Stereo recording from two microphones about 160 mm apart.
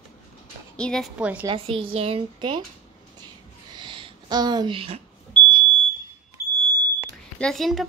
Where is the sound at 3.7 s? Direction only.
30° right (ahead or behind).